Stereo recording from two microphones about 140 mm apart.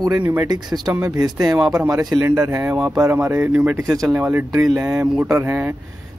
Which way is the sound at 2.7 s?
5° right (ahead or behind).